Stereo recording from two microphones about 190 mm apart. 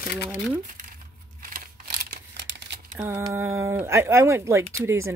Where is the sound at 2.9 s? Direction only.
15° right (ahead or behind).